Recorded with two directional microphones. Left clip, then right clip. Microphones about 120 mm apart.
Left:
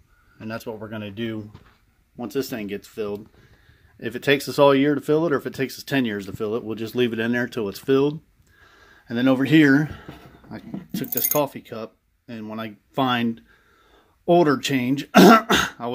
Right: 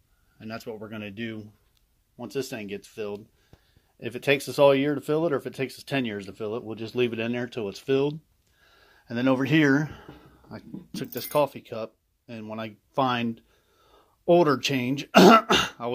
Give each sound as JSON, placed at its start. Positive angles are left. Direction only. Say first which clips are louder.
{"t": 0.5, "sound": "speech", "louder": "left 5 dB", "side_deg": -10}
{"t": 1.1, "sound": "speech", "louder": "left 8 dB", "side_deg": 5}
{"t": 2.1, "sound": "speech", "louder": "left 5 dB", "side_deg": 15}
{"t": 8.7, "sound": "speech", "louder": "left 5 dB", "side_deg": 5}